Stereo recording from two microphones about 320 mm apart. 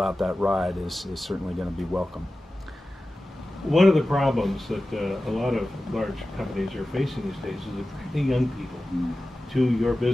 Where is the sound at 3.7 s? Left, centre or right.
Centre.